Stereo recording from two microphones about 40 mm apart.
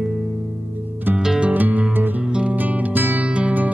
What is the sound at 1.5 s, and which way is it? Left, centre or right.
Music, right.